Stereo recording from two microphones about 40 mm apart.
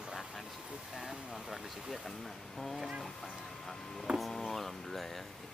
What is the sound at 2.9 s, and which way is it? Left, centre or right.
Speech, centre.